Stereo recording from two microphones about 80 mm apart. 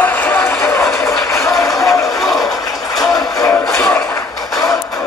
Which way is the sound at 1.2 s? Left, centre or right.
Left.